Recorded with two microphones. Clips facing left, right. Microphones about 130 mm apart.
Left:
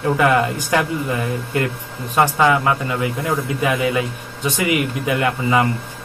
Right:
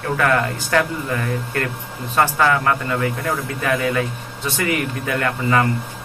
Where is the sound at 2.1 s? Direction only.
15° left (ahead or behind).